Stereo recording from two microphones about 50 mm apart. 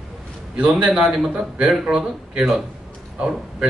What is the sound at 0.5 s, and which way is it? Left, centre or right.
Speech, right.